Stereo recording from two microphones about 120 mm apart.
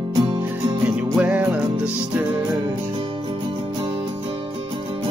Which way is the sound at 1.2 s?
10° right (ahead or behind).